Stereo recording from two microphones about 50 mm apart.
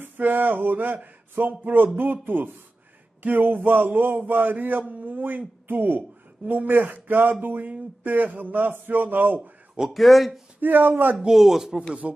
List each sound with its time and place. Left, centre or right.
0.0 s a sound: right
1.6 s a man's voice: right
9.8 s speech: centre
10.6 s a man's voice: right
11.1 s speech: centre